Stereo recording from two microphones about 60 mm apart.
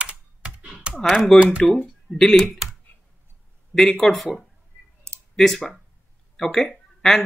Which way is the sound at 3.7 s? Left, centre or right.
Centre.